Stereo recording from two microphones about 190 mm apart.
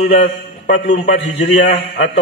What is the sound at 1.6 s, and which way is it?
Speech, 60° left (ahead or behind).